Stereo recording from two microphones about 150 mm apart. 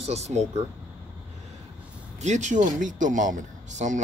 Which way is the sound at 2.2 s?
50° right (ahead or behind).